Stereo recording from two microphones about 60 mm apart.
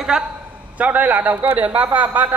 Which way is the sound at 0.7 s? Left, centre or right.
Right.